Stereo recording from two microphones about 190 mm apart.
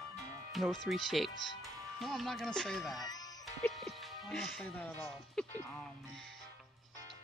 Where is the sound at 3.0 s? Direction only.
20° left (ahead or behind).